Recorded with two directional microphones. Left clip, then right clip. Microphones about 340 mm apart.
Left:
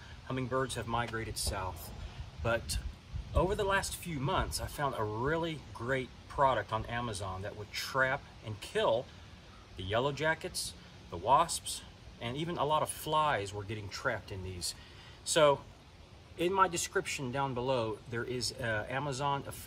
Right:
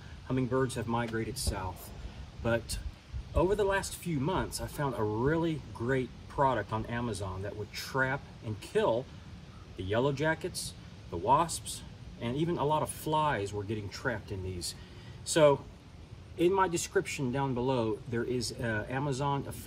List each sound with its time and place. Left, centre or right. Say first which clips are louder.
0.3 s a man's voice: right 3 dB; centre